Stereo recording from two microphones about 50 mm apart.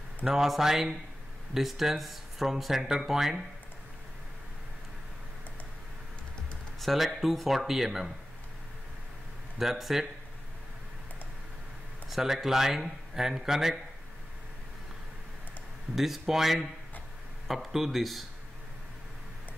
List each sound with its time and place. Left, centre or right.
0.3 s speech: centre
6.8 s speech: centre
9.6 s speech: centre
12.1 s speech: centre
15.9 s speech: centre